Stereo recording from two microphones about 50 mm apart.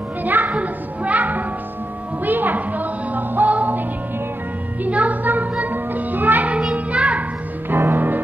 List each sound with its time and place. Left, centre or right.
0.2 s music: right
4.8 s music: right
6.5 s music: right
7.7 s music: right